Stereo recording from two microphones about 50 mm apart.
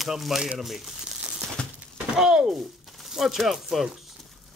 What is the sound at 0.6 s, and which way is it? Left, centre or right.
Speech, centre.